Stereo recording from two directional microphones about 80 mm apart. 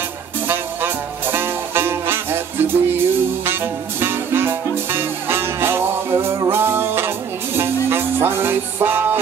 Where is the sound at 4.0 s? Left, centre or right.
Right.